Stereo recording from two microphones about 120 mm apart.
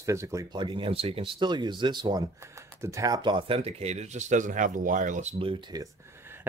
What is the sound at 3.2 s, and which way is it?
Speech, 45° right (ahead or behind).